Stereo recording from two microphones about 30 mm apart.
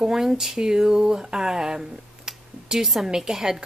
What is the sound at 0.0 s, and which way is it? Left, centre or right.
Speech, centre.